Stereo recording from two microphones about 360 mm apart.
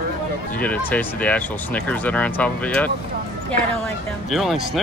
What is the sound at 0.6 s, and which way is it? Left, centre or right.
Speech, centre.